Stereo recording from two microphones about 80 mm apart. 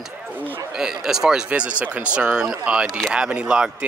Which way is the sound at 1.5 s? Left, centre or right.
Centre.